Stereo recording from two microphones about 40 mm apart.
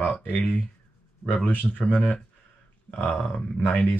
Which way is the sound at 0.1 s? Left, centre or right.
Left.